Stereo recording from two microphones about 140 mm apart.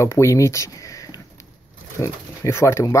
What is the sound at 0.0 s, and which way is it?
Speech, 20° left (ahead or behind).